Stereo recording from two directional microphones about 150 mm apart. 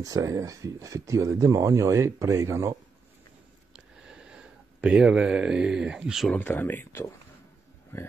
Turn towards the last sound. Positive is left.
turn(degrees=15)  # may be behind; listen again after turning